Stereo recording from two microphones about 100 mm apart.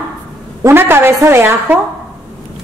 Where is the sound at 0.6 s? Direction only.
25° right (ahead or behind).